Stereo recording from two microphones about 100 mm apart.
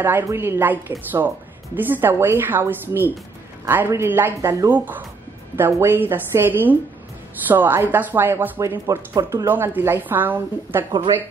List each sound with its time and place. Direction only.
0.0 s speech: 25° right (ahead or behind)